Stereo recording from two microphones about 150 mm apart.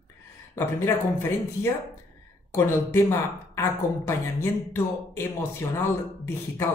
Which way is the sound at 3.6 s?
15° left (ahead or behind).